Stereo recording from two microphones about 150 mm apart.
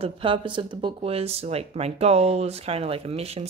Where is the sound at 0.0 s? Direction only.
35° right (ahead or behind).